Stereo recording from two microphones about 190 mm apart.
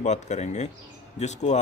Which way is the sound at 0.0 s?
35° left (ahead or behind).